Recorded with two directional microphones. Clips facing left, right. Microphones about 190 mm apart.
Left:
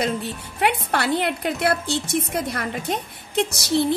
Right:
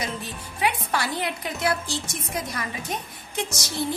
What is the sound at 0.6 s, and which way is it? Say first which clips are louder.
A woman's voice: left 4 dB; 60° left (ahead or behind).